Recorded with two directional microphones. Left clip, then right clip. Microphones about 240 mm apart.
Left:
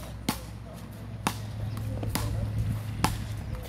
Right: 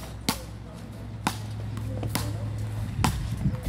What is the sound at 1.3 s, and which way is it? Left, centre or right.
Music, centre.